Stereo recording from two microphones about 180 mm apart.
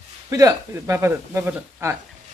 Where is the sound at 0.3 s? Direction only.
15° right (ahead or behind).